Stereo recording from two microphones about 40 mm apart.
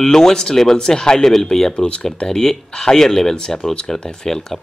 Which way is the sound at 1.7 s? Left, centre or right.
Left.